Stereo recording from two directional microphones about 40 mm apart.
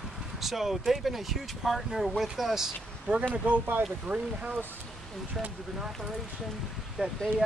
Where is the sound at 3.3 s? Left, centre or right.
Right.